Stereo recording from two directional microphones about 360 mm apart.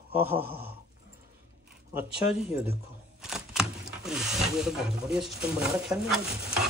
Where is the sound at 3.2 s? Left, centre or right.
Centre.